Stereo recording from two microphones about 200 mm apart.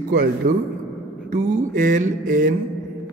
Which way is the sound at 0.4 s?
40° right (ahead or behind).